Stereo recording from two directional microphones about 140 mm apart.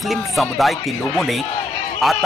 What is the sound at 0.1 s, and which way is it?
A man's voice, centre (ahead or behind).